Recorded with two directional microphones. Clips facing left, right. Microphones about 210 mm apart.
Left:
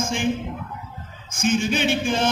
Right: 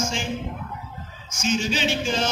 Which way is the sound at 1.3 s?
55° left (ahead or behind).